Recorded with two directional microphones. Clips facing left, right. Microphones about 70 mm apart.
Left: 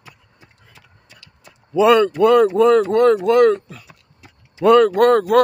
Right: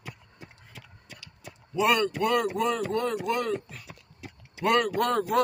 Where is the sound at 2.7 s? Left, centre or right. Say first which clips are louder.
Left 14 dB; left.